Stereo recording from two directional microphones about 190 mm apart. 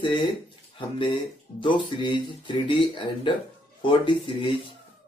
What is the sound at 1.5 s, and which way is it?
Speech, 25° left (ahead or behind).